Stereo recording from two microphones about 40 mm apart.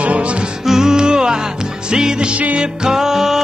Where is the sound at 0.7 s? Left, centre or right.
Centre.